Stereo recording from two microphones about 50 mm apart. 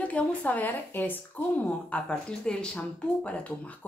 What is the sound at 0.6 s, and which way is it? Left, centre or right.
Speech, left.